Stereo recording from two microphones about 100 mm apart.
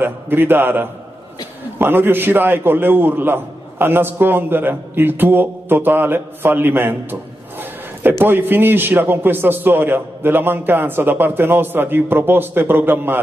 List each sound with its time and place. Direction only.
0.0 s a man's voice: 20° right (ahead or behind)